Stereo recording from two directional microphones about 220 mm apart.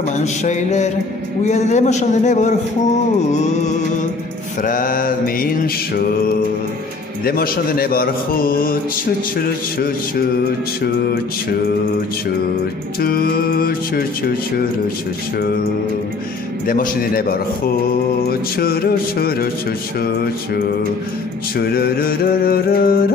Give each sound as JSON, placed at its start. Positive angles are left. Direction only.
{"t": 0.2, "sound": "a man's voice", "side_deg": 30}
{"t": 4.6, "sound": "a man's voice", "side_deg": 40}
{"t": 7.2, "sound": "a man's voice", "side_deg": 45}
{"t": 13.0, "sound": "a man's voice", "side_deg": 45}
{"t": 16.6, "sound": "a man's voice", "side_deg": 40}
{"t": 21.5, "sound": "a man's voice", "side_deg": 45}